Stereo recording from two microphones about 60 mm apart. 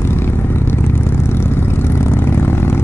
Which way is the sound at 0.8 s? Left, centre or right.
Left.